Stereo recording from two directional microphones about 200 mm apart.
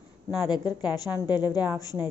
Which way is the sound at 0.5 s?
20° left (ahead or behind).